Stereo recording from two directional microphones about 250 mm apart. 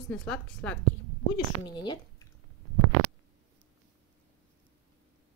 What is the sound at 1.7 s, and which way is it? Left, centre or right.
Speech, centre.